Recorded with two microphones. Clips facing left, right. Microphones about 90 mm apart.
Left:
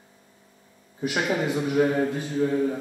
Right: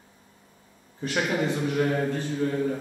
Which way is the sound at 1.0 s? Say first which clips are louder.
Left 1 dB; 15° left (ahead or behind).